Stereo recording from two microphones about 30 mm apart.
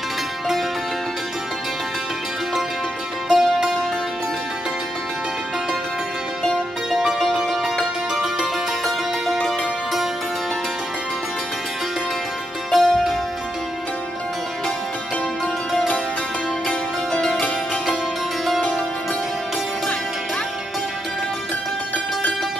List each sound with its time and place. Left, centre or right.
3.3 s music: centre
7.8 s music: centre
9.4 s music: centre
12.7 s music: centre
17.1 s music: centre
18.4 s music: centre